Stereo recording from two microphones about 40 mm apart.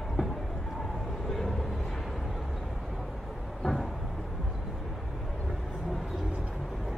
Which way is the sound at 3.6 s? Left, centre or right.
Centre.